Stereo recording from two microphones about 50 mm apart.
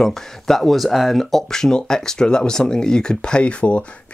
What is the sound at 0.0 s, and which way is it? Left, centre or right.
Speech, centre.